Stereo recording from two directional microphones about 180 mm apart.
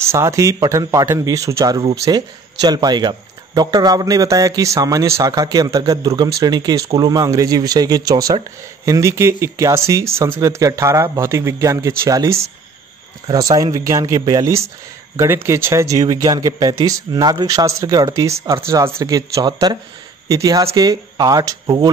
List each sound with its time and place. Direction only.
0.0 s a man's voice: 15° right (ahead or behind)